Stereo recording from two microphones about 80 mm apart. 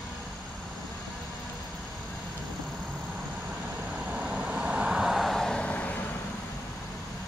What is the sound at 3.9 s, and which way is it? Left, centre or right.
Vehicle, centre.